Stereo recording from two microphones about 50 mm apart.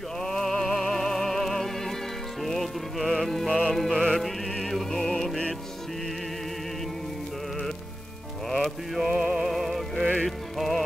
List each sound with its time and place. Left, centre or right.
0.2 s music: centre
3.4 s music: left
3.7 s music: centre
8.5 s music: centre
9.1 s music: centre